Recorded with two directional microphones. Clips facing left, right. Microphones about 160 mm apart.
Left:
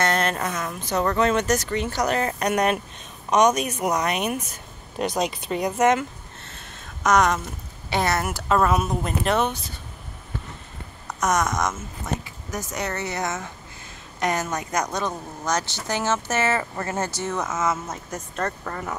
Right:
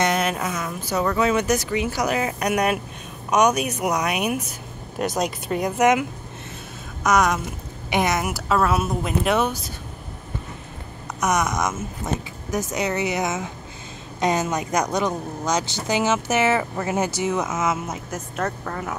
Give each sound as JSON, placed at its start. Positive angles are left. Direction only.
{"t": 0.0, "sound": "speech", "side_deg": -10}
{"t": 5.8, "sound": "speech", "side_deg": -15}
{"t": 11.1, "sound": "speech", "side_deg": -10}
{"t": 12.0, "sound": "speech", "side_deg": -20}